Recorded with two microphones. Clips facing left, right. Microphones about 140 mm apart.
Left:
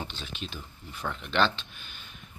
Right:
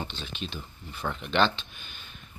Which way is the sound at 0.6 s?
5° right (ahead or behind).